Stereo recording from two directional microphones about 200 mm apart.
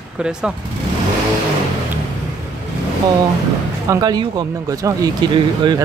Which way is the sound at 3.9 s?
20° right (ahead or behind).